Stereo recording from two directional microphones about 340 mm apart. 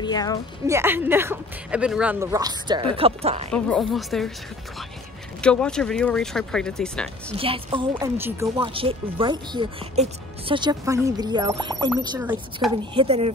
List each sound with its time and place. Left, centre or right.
0.0 s speech: centre
0.7 s speech: centre
3.5 s speech: centre
5.4 s speech: centre
7.3 s speech: centre